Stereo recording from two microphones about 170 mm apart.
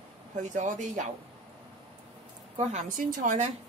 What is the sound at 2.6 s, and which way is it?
Speech, 40° right (ahead or behind).